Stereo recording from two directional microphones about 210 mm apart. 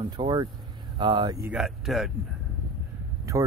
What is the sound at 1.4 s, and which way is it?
Speech, centre (ahead or behind).